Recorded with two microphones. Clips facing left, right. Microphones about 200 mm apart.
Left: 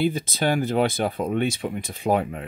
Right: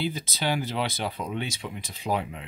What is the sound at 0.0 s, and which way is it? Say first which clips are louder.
Speech: left 7 dB; 50° left (ahead or behind).